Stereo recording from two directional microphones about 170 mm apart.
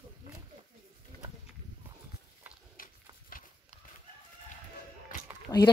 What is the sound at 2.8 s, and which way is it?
Horse, 55° left (ahead or behind).